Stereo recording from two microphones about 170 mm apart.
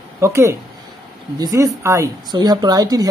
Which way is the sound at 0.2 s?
15° right (ahead or behind).